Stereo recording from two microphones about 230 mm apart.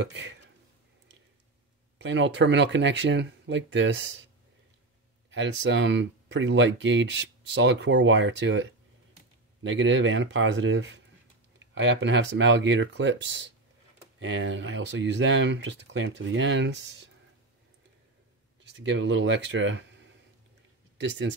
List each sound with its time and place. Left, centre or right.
0.0 s speech: right
2.0 s speech: right
5.3 s speech: right
18.8 s speech: right